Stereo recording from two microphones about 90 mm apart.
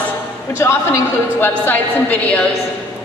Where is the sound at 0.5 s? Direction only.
30° left (ahead or behind).